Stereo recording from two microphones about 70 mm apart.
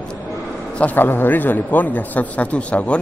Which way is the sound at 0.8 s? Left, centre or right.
Left.